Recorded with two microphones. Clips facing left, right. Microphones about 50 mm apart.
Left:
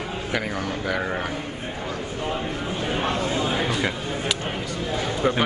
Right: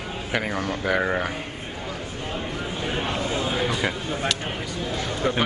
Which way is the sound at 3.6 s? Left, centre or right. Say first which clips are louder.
Even; centre.